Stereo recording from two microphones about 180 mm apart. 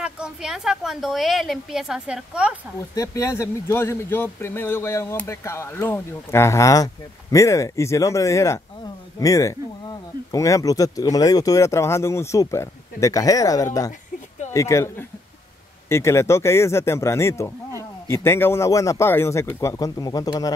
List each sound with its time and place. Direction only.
0.0 s a woman's voice: 5° right (ahead or behind)
2.8 s speech: 15° left (ahead or behind)